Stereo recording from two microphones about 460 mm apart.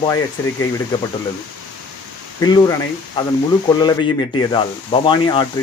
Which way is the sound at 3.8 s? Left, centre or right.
Centre.